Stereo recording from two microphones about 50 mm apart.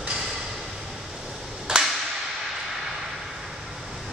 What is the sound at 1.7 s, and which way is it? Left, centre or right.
Whip, centre.